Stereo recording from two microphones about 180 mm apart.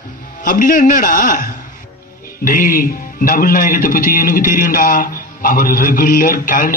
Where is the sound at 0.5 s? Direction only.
50° left (ahead or behind).